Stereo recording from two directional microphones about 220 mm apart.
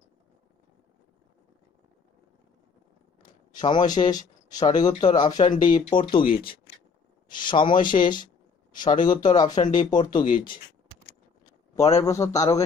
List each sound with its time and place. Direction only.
3.6 s speech: 20° left (ahead or behind)
6.2 s speech: 40° left (ahead or behind)
7.4 s speech: 20° left (ahead or behind)
9.0 s speech: 20° left (ahead or behind)
11.4 s a sound: 15° left (ahead or behind)
12.0 s speech: 15° left (ahead or behind)